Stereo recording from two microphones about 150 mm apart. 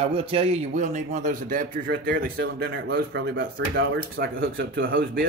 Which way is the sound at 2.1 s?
85° right.